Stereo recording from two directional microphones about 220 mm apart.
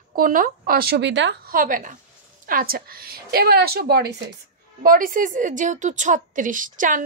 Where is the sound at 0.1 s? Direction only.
40° right (ahead or behind).